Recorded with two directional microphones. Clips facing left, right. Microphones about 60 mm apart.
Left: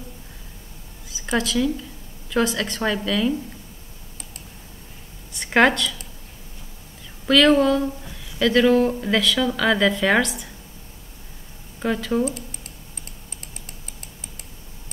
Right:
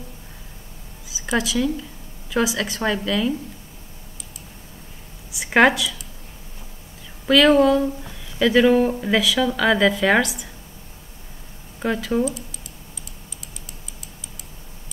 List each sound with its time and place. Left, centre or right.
1.0 s a woman's voice: centre
5.3 s speech: centre
7.2 s speech: centre
11.8 s speech: centre
13.4 s typing: left